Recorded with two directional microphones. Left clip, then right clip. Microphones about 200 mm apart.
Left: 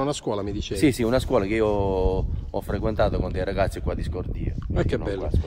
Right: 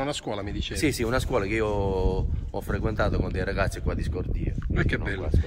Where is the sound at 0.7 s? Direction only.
50° left (ahead or behind).